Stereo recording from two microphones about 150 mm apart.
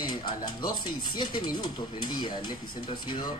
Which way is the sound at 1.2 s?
30° left (ahead or behind).